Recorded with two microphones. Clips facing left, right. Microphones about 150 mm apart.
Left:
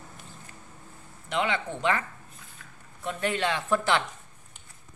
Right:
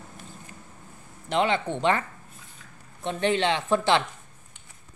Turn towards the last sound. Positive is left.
turn(degrees=-25)  # may be behind; listen again after turning